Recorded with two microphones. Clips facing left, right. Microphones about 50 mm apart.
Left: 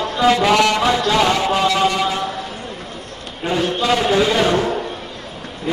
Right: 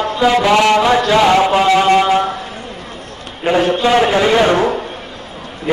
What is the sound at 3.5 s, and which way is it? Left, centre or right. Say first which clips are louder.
A man's voice: right 6 dB; right.